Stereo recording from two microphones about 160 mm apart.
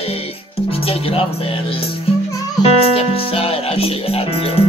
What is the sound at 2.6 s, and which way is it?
Music, 35° left (ahead or behind).